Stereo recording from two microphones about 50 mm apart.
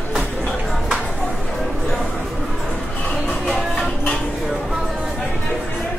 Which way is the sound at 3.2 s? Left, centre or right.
Centre.